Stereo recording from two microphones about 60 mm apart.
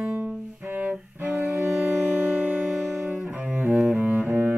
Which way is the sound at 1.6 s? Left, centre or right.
Centre.